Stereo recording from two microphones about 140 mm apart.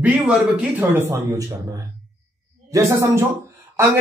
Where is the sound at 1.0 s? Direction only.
20° right (ahead or behind).